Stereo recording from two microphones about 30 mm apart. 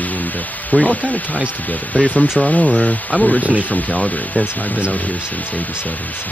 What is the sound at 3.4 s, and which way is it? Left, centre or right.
Speech, right.